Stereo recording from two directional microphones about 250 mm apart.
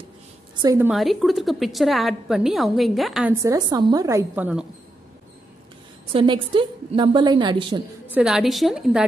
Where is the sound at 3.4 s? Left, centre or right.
Centre.